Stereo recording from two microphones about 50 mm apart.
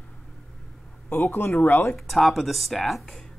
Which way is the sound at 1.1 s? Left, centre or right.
Left.